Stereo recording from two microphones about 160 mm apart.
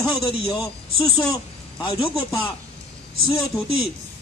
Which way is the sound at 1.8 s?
35° left (ahead or behind).